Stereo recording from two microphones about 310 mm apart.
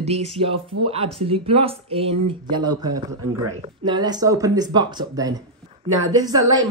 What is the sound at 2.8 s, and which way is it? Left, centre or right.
Speech, right.